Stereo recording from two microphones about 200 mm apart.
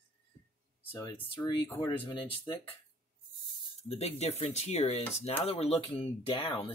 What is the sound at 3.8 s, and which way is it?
Speech, 30° left (ahead or behind).